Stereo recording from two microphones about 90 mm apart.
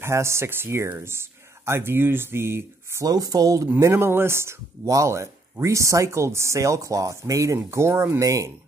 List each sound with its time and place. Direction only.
0.0 s speech: 30° right (ahead or behind)
3.1 s speech: 45° right (ahead or behind)
3.8 s speech: 30° right (ahead or behind)